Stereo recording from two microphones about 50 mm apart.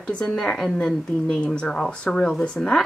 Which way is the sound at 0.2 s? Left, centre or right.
Centre.